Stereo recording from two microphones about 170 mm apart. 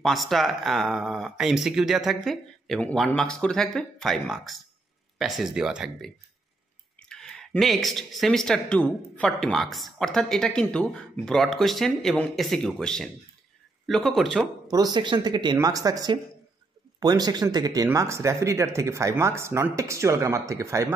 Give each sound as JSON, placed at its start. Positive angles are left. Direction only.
{"t": 0.0, "sound": "speech", "side_deg": 0}
{"t": 14.7, "sound": "speech", "side_deg": -25}